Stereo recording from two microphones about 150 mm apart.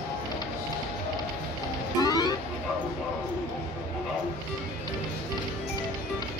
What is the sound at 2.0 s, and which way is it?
Vehicle, 25° left (ahead or behind).